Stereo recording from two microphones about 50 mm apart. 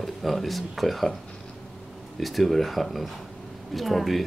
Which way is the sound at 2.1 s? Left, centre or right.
Centre.